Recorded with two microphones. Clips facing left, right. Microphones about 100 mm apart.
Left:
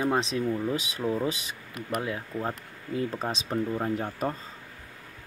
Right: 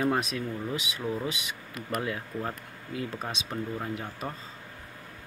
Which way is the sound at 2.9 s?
35° left (ahead or behind).